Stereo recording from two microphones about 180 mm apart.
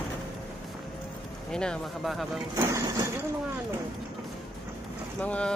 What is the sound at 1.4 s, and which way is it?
Speech, 5° left (ahead or behind).